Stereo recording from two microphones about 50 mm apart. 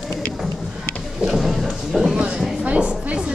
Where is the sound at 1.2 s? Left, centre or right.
Centre.